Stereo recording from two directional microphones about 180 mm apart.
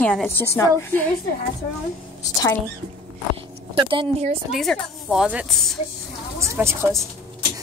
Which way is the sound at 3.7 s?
25° right (ahead or behind).